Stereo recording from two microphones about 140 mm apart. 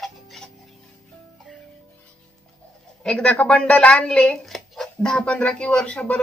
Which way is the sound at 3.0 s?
5° left (ahead or behind).